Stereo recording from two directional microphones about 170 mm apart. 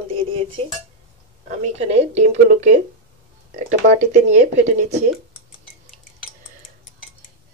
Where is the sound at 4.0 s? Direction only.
45° right (ahead or behind).